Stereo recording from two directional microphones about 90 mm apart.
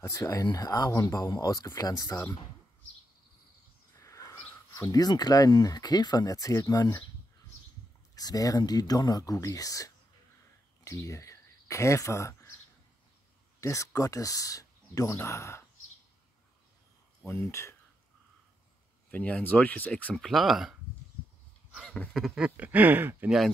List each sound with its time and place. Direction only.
0.0 s speech: 35° left (ahead or behind)
1.2 s speech: 55° left (ahead or behind)
3.9 s a sound: 35° left (ahead or behind)
4.7 s speech: 40° left (ahead or behind)
8.1 s speech: 45° left (ahead or behind)
10.8 s a sound: 35° left (ahead or behind)
13.6 s speech: 35° left (ahead or behind)
17.2 s speech: 30° left (ahead or behind)
19.0 s speech: 20° left (ahead or behind)
20.2 s speech: centre (ahead or behind)
21.9 s a sound: 15° left (ahead or behind)
22.2 s speech: 10° right (ahead or behind)